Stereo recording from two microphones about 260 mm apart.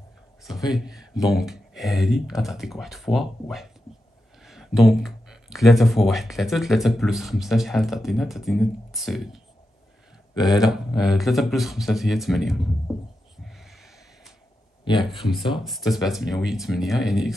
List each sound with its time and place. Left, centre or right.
0.7 s speech: centre
10.4 s speech: centre
13.4 s snort: centre
15.2 s speech: centre